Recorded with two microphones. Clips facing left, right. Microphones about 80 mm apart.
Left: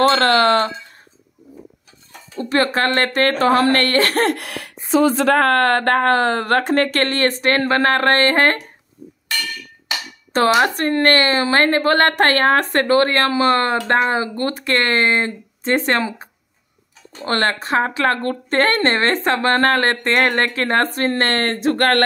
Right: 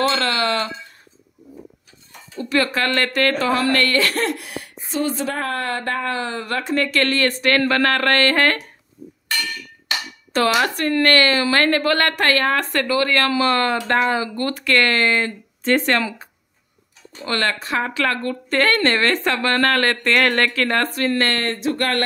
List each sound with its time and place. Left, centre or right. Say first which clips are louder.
0.0 s a woman's voice: left 6 dB; left
2.3 s a woman's voice: left 2 dB; left
10.3 s a woman's voice: left 3 dB; left